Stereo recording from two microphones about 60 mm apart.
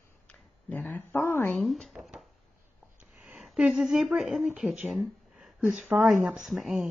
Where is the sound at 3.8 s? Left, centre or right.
Centre.